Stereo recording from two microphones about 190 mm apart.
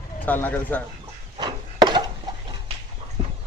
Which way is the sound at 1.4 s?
25° right (ahead or behind).